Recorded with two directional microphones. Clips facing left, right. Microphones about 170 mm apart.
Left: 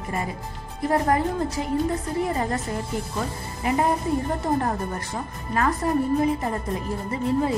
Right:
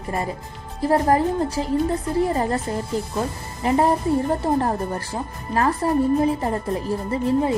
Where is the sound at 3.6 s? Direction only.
35° right (ahead or behind).